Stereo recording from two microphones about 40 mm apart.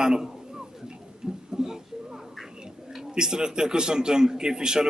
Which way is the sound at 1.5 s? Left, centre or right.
Centre.